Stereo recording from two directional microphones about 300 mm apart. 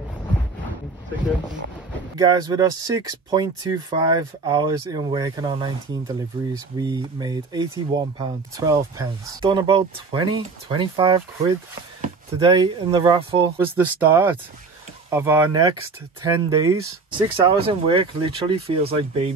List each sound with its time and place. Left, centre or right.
2.1 s speech: centre